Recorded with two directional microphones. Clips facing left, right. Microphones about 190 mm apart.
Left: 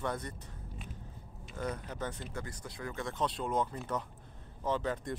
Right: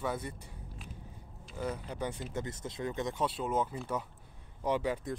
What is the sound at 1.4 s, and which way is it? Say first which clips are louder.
Speech: right 1 dB; 5° right (ahead or behind).